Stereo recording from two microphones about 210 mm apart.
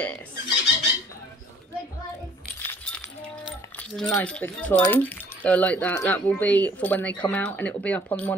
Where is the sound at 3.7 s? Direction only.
5° left (ahead or behind).